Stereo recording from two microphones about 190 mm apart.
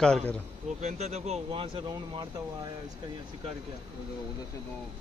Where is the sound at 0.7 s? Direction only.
35° right (ahead or behind).